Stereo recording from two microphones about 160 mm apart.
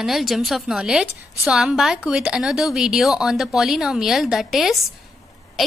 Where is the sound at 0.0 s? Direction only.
Centre (ahead or behind).